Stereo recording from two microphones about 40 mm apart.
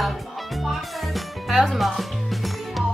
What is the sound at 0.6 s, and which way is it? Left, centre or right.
Music, centre.